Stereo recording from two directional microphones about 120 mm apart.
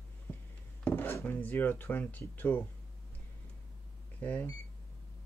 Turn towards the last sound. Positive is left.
turn(degrees=10)  # may be behind; listen again after turning